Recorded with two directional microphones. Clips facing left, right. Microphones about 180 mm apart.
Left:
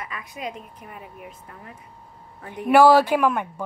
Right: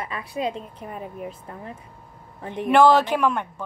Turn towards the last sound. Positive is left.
turn(degrees=10)  # may be behind; listen again after turning